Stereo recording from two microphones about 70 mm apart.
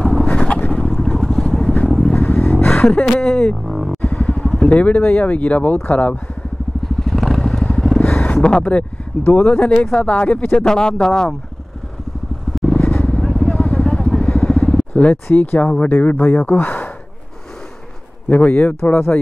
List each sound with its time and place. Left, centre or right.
0.0 s vehicle: centre
0.3 s vehicle: centre
0.8 s vehicle: centre
2.7 s a sound: left
3.2 s speech: centre
3.6 s vehicle: centre
4.1 s speech: centre
7.0 s vehicle: centre
8.0 s speech: centre
12.5 s vehicle: centre
15.3 s speech: left
18.3 s speech: left